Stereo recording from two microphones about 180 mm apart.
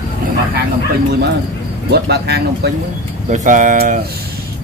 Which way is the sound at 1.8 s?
65° right (ahead or behind).